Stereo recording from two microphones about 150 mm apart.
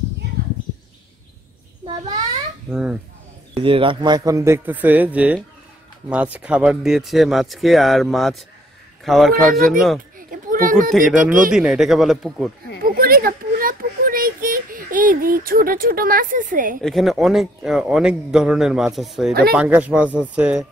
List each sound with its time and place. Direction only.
2.7 s speech: 5° right (ahead or behind)
3.5 s a man's voice: 35° right (ahead or behind); by 9.9 s centre (ahead or behind)
10.1 s a sound: 65° right (ahead or behind)
10.9 s a man's voice: centre (ahead or behind)
12.8 s child singing: 75° right (ahead or behind)
16.8 s a man's voice: centre (ahead or behind)